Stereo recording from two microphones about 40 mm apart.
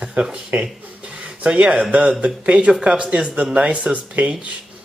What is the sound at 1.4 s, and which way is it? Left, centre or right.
Speech, right.